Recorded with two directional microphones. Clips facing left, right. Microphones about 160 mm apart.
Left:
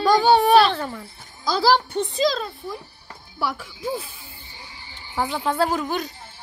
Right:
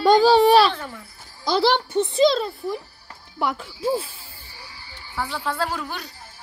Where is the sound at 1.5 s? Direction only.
25° right (ahead or behind).